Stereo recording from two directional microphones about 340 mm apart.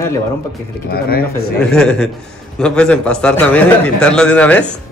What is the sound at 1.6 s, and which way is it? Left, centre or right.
Speech, centre.